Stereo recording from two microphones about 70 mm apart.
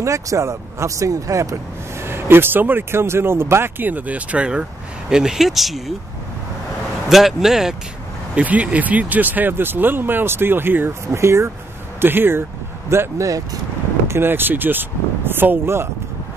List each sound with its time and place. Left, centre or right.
0.0 s speech: right
2.0 s speech: right; by 5.9 s centre
7.1 s speech: centre
8.4 s speech: centre; by 15.9 s right